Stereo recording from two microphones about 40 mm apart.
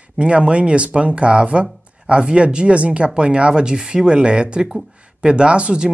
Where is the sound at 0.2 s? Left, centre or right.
Right.